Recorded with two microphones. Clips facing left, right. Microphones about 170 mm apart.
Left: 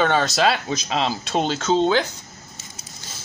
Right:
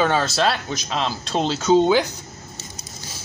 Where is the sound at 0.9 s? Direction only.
15° left (ahead or behind).